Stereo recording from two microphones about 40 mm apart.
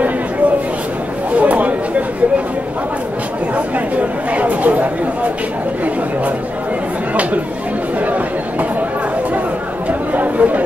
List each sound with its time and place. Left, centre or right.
1.3 s chatter: right
3.5 s chatter: right
10.1 s chatter: right